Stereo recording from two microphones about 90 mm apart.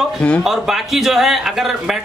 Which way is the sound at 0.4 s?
5° right (ahead or behind).